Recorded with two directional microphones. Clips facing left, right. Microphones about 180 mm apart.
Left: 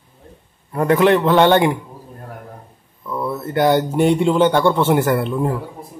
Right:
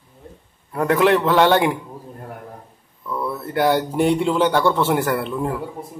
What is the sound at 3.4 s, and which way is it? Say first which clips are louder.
Speech: left 3 dB; 5° right (ahead or behind).